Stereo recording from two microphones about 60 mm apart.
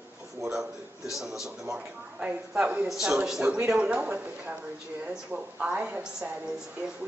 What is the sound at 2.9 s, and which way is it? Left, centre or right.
Speech, centre.